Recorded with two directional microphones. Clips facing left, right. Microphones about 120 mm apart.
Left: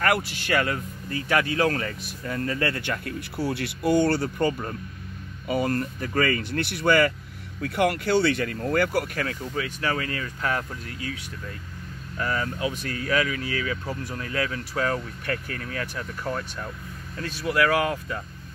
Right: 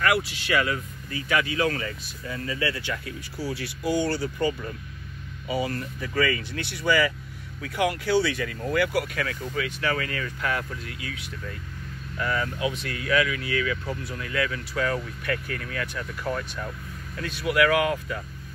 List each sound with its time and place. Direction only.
0.0 s speech: 45° left (ahead or behind)
12.2 s speech: 35° left (ahead or behind)